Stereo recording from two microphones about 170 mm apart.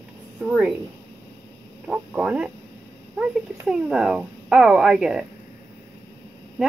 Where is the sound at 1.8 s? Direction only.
5° right (ahead or behind).